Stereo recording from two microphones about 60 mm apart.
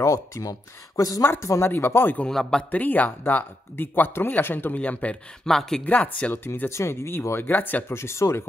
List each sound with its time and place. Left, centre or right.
0.0 s speech: left
1.2 s speech: left
2.2 s a man's voice: centre
2.7 s speech: left
5.4 s a man's voice: centre
5.9 s speech: left
6.7 s speech: left
7.9 s speech: left